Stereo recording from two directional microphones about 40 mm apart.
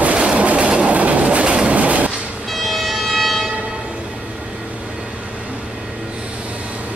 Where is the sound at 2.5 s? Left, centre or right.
Centre.